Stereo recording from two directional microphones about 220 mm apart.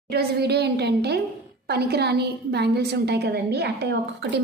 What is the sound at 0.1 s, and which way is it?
A woman's voice, 45° right (ahead or behind).